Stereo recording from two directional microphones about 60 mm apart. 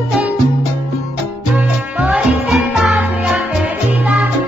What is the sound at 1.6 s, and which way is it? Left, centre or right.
Music, centre.